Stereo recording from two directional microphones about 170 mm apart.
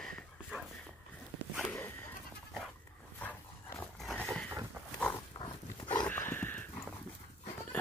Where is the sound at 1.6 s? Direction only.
10° left (ahead or behind).